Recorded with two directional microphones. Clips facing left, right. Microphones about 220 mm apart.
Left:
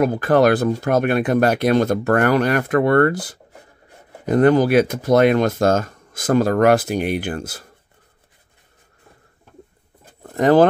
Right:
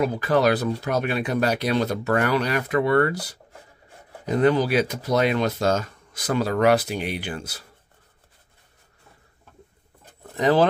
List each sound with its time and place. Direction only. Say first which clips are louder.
0.0 s speech: left 5 dB; 50° left (ahead or behind)
10.3 s speech: left 6 dB; 50° left (ahead or behind)